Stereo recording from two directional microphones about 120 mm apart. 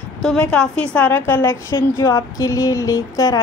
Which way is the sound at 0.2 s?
5° left (ahead or behind).